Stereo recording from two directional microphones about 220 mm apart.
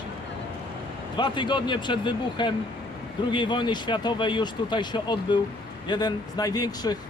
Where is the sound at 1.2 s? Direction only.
20° left (ahead or behind).